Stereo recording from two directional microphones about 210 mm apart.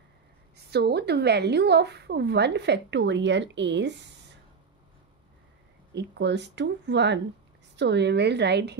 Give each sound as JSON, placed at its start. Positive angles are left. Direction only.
{"t": 0.7, "sound": "a woman's voice", "side_deg": -50}
{"t": 5.9, "sound": "speech", "side_deg": -55}